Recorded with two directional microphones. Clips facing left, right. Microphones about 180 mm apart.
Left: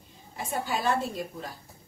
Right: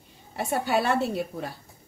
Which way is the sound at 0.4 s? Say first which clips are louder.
Right 6 dB; 70° right (ahead or behind).